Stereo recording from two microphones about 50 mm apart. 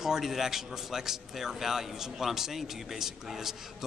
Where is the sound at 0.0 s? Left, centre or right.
Centre.